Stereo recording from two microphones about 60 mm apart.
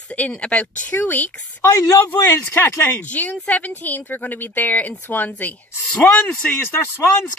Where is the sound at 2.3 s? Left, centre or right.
Left.